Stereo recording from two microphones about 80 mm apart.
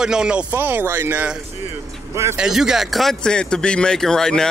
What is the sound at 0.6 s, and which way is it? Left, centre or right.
Speech, right.